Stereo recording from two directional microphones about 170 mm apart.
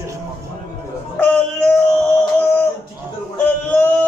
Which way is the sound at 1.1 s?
5° left (ahead or behind).